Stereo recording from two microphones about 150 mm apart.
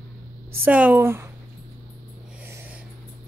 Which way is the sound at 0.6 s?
10° right (ahead or behind).